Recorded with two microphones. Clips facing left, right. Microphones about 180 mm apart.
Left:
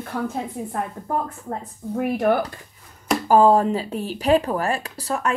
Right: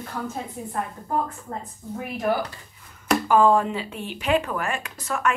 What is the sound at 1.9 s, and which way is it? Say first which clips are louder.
Speech: left 5 dB; 60° left (ahead or behind).